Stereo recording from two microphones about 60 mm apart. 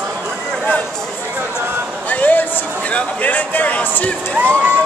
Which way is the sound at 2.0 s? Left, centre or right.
Left.